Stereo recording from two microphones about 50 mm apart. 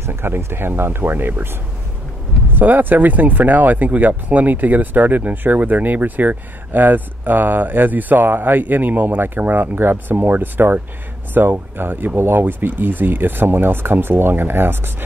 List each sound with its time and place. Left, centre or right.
0.0 s speech: right
2.5 s speech: right